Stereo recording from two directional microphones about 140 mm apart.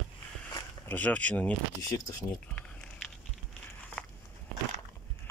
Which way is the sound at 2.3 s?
5° left (ahead or behind).